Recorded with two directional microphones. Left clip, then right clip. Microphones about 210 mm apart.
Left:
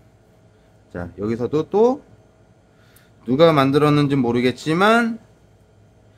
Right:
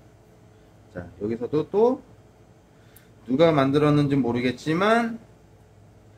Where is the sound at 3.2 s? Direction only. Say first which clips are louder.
Left 5 dB; 40° left (ahead or behind).